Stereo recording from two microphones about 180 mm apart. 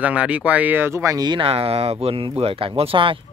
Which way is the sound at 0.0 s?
5° right (ahead or behind).